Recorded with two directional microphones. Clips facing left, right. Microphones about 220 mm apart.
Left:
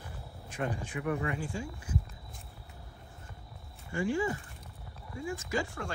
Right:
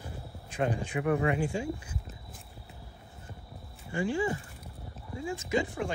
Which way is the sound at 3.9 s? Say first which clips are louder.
Right 1 dB; 30° right (ahead or behind).